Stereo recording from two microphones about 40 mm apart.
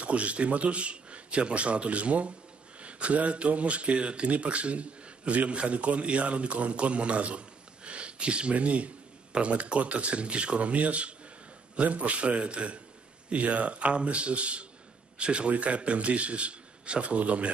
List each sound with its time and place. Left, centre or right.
0.0 s speech: right